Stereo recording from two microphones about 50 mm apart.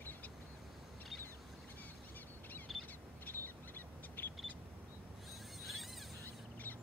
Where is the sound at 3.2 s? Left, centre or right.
Left.